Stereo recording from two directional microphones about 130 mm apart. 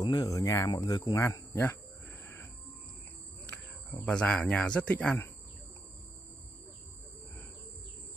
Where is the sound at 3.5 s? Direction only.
10° left (ahead or behind).